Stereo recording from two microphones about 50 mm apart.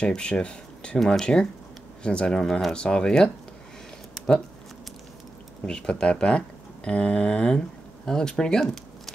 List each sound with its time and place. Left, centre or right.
0.0 s speech: centre
0.9 s speech: centre
1.2 s speech: centre
5.7 s speech: centre